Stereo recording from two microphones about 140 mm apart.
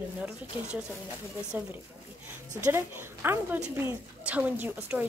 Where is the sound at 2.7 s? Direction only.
15° right (ahead or behind).